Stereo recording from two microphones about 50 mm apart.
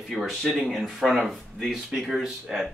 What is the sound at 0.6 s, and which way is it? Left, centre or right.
Speech, centre.